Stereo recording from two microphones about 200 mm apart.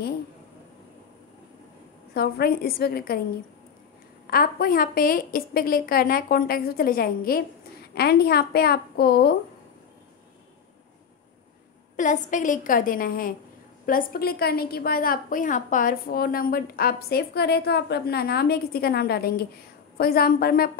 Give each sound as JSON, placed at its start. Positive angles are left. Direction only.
{"t": 2.1, "sound": "a woman's voice", "side_deg": 50}
{"t": 4.3, "sound": "a woman's voice", "side_deg": 45}
{"t": 12.0, "sound": "a woman's voice", "side_deg": 40}